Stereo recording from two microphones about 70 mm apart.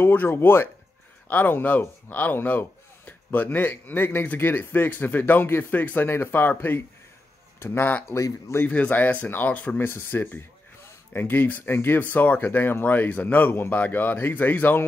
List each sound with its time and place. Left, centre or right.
0.0 s speech: left
7.5 s speech: left
8.1 s speech: left
8.6 s speech: left